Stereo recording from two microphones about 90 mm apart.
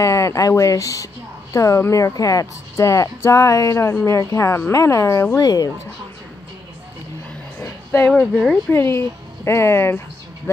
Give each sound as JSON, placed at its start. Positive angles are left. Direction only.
{"t": 0.0, "sound": "speech", "side_deg": 35}
{"t": 5.4, "sound": "speech", "side_deg": 45}
{"t": 7.6, "sound": "a sound", "side_deg": 30}
{"t": 8.1, "sound": "speech", "side_deg": 5}
{"t": 8.6, "sound": "speech", "side_deg": 30}